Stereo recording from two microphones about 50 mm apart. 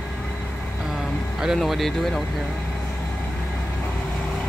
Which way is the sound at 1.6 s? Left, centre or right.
Centre.